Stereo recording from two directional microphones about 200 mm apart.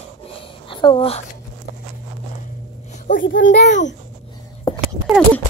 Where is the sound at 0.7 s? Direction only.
25° left (ahead or behind).